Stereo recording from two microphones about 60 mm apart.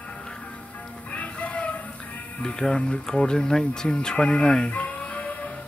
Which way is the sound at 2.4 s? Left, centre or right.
Centre.